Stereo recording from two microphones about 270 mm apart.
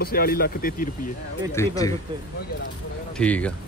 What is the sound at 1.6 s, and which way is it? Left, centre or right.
Speech, centre.